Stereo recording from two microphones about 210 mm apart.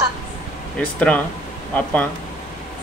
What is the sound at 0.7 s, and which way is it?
Speech, 5° left (ahead or behind).